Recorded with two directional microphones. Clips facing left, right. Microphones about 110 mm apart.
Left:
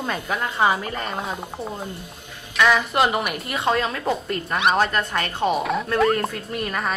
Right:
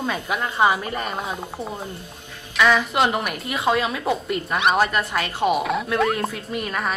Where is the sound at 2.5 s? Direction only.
Centre (ahead or behind).